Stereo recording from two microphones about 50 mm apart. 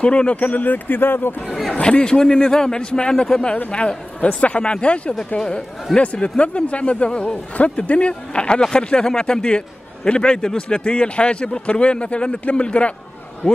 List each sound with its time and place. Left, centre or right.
0.0 s speech: left
1.8 s a man's voice: centre